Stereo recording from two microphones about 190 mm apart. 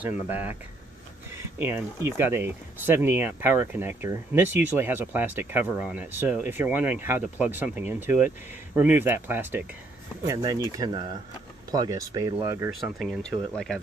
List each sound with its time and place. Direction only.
0.0 s speech: 10° right (ahead or behind)
13.0 s speech: centre (ahead or behind)